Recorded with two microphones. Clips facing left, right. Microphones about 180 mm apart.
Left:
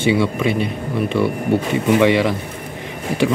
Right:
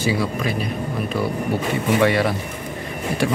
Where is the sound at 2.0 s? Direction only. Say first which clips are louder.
Left 2 dB; 15° left (ahead or behind).